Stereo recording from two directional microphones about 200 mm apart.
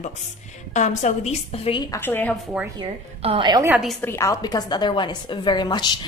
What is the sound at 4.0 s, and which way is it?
A woman's voice, 15° left (ahead or behind).